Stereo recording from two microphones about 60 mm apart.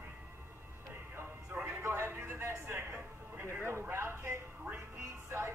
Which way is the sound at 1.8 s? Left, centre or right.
Right.